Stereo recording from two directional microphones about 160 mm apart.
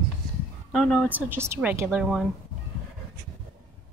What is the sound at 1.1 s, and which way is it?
A woman's voice, 10° right (ahead or behind).